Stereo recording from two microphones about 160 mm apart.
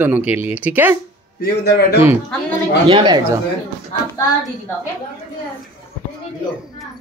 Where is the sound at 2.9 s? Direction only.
25° right (ahead or behind).